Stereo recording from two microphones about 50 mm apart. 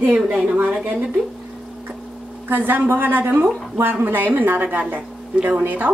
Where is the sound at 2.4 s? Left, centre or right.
Right.